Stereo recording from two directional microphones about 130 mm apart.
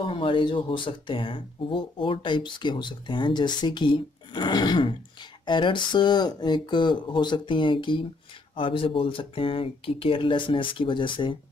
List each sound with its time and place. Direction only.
0.0 s speech: 40° left (ahead or behind)